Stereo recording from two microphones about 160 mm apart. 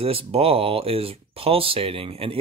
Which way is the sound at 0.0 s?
35° right (ahead or behind).